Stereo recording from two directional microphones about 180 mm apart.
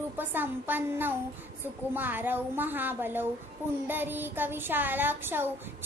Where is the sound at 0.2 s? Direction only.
10° right (ahead or behind).